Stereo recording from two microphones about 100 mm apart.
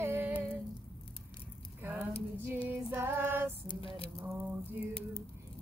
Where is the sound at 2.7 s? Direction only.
20° right (ahead or behind).